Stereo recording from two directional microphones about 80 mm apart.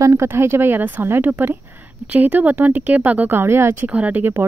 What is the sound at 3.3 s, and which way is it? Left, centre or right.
Speech, right.